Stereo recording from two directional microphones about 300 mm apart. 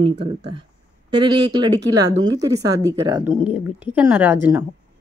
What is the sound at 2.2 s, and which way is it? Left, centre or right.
Speech, centre.